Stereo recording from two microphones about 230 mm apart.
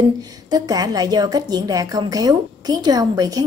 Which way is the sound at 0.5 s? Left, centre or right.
Centre.